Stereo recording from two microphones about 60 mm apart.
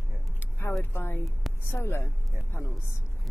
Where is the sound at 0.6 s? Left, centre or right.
Left.